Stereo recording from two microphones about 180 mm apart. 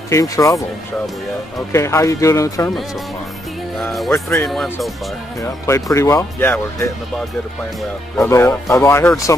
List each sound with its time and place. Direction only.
0.1 s speech: 15° left (ahead or behind)
1.7 s speech: 15° left (ahead or behind)
4.1 s speech: 15° left (ahead or behind)
5.7 s speech: 15° left (ahead or behind)
8.2 s speech: 15° left (ahead or behind)